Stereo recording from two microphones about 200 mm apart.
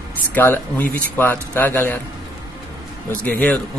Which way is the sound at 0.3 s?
10° left (ahead or behind).